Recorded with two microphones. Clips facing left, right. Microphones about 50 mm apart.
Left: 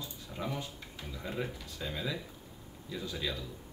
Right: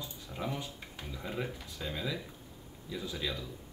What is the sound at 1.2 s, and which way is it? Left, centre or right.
Speech, centre.